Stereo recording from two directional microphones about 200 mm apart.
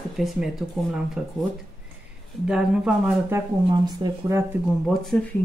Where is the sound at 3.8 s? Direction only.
20° right (ahead or behind).